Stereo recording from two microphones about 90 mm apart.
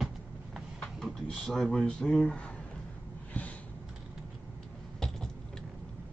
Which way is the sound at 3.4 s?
15° left (ahead or behind).